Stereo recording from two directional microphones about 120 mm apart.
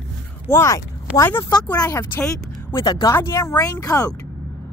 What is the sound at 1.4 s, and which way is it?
Speech, 35° left (ahead or behind).